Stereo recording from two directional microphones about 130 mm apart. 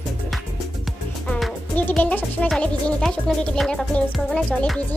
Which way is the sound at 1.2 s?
Centre (ahead or behind).